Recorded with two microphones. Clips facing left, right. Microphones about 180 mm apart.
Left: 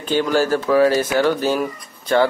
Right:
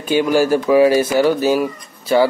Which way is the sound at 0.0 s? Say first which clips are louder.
Right 3 dB; 10° right (ahead or behind).